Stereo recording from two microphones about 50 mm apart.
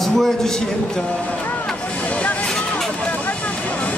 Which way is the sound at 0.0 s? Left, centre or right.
Centre.